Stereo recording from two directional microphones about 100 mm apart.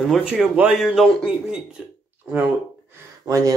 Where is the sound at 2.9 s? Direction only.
35° right (ahead or behind).